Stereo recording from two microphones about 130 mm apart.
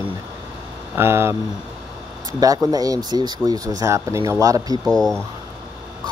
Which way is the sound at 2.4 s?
25° right (ahead or behind).